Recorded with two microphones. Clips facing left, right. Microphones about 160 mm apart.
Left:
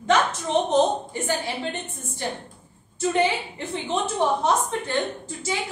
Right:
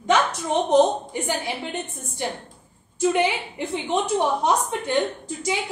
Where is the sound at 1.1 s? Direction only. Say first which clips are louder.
Even; 15° right (ahead or behind).